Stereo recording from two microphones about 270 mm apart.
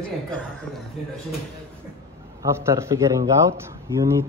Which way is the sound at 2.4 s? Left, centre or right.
Centre.